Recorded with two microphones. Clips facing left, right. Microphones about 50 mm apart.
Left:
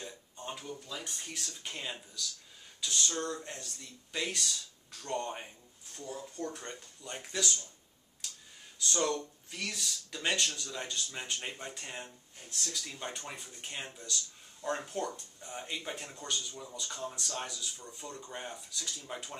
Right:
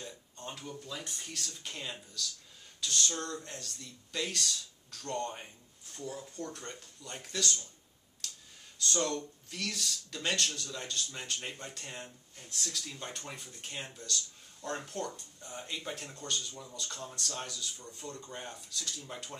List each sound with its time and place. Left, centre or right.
0.0 s a sound: centre
0.8 s speech: centre
8.7 s speech: centre